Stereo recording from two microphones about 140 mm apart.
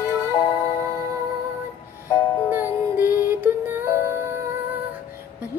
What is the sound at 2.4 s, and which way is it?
Music, 15° right (ahead or behind).